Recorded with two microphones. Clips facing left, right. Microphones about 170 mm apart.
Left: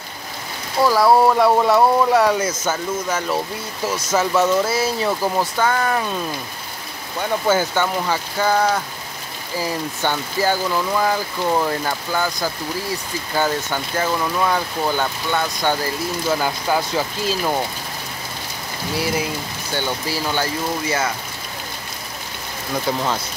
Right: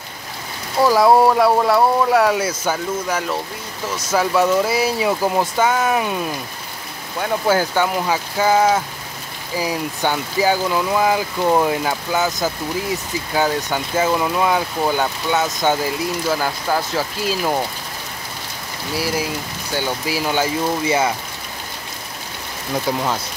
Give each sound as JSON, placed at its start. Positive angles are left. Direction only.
{"t": 0.8, "sound": "speech", "side_deg": -15}
{"t": 1.3, "sound": "speech", "side_deg": -5}
{"t": 4.1, "sound": "speech", "side_deg": -10}
{"t": 16.3, "sound": "speech", "side_deg": 0}
{"t": 18.9, "sound": "speech", "side_deg": -5}